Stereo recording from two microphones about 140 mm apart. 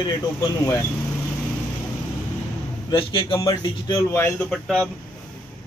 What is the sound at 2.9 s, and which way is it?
Speech, 40° left (ahead or behind).